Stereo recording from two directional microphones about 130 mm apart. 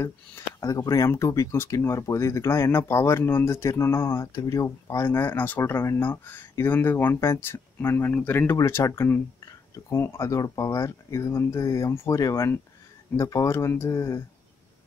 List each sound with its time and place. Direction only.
0.6 s speech: 25° left (ahead or behind)